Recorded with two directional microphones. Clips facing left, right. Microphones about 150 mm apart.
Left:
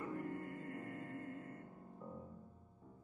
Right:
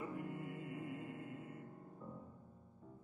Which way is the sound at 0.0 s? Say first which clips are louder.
Left 1 dB; 10° right (ahead or behind).